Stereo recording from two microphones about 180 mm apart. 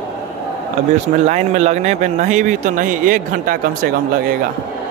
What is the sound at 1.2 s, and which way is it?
A man's voice, 40° right (ahead or behind).